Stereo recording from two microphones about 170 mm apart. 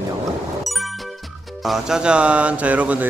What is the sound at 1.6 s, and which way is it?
Speech, centre (ahead or behind).